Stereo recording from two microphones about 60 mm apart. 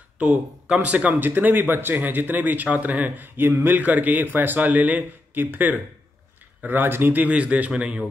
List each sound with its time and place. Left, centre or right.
0.8 s speech: right
3.3 s a man's voice: right; by 8.1 s centre